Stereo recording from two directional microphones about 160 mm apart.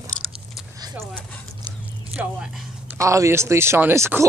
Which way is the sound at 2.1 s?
5° right (ahead or behind).